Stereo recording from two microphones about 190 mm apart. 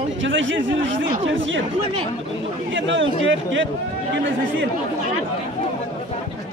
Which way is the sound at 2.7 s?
80° right.